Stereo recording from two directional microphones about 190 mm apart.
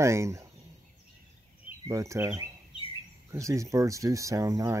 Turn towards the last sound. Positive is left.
turn(degrees=-15)  # may be behind; listen again after turning